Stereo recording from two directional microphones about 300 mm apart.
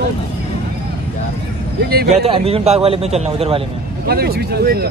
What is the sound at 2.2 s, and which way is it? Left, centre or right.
A man's voice, centre.